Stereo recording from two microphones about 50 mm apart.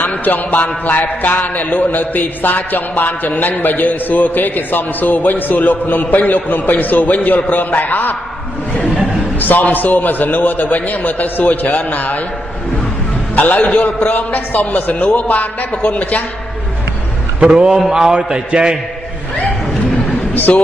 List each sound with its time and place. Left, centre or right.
0.0 s a man's voice: left
9.4 s a man's voice: left
13.4 s a man's voice: left
17.4 s a man's voice: centre
20.5 s speech: left